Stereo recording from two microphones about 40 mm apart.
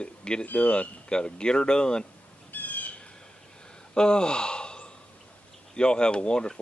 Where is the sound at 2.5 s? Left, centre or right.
Left.